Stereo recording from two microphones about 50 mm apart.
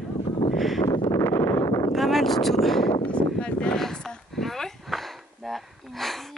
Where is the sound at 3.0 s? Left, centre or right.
Left.